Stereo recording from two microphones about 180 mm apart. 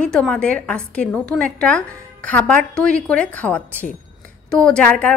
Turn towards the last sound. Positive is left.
turn(degrees=10)  # may be behind; listen again after turning